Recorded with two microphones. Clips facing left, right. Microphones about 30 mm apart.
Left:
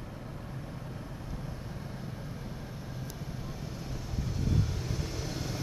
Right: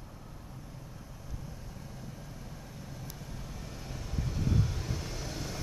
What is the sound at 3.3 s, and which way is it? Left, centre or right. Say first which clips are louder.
Vehicle: left 4 dB; centre.